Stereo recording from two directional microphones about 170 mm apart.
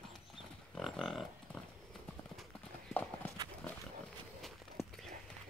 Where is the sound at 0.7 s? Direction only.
Centre (ahead or behind).